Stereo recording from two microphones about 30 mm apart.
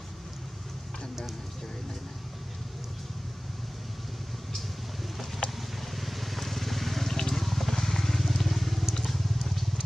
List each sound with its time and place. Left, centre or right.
5.4 s vehicle: left
5.8 s vehicle: centre
7.2 s vehicle: centre
7.4 s a sound: centre
7.7 s vehicle: centre